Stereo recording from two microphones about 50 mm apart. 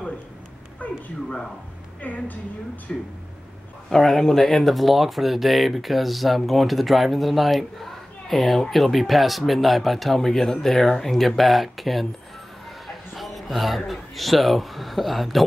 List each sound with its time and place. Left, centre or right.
0.8 s a sound: left
2.0 s a woman's voice: left
3.9 s speech: centre